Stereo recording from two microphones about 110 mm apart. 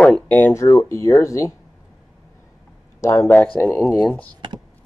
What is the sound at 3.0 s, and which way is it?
Speech, 25° left (ahead or behind).